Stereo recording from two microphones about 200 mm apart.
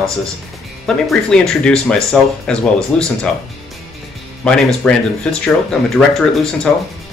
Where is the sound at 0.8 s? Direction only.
Centre (ahead or behind).